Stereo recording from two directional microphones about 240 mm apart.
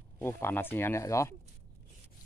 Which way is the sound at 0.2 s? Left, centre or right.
Centre.